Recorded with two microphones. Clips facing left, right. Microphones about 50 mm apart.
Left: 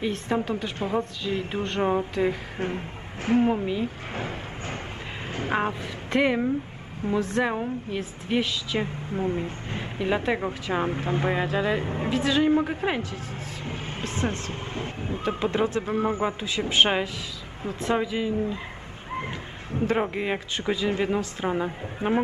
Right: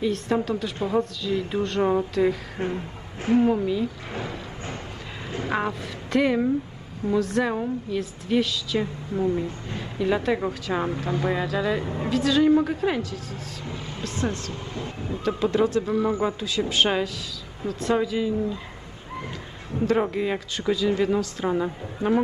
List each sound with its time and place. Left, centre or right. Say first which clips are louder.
0.0 s a woman's voice: right 2 dB; left
3.8 s a sound: right 1 dB; left
5.3 s a woman's voice: even; left